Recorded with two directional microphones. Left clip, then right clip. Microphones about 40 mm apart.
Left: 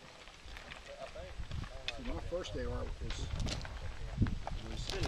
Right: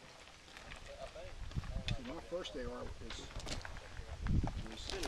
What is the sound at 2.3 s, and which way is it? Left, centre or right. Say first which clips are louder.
Speech: left 3 dB; left.